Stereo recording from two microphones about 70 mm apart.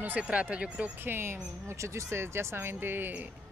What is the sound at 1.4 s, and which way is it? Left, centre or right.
Speech, right.